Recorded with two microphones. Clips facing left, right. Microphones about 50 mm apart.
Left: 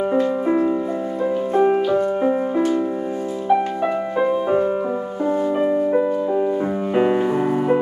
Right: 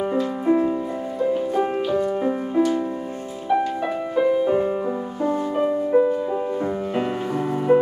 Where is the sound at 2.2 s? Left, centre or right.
Centre.